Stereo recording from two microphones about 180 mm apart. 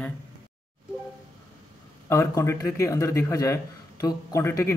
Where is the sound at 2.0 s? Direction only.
15° left (ahead or behind).